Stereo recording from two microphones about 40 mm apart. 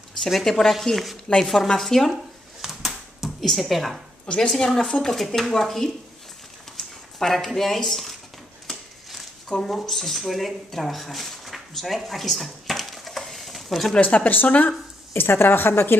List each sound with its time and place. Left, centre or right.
0.3 s speech: centre
2.8 s a sound: centre
3.4 s speech: centre
4.3 s speech: centre
5.0 s speech: centre
9.5 s speech: centre
13.9 s speech: left
15.1 s a woman's voice: left